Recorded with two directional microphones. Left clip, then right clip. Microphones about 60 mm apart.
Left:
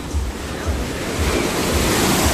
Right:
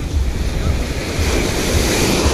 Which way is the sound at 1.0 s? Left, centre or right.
Centre.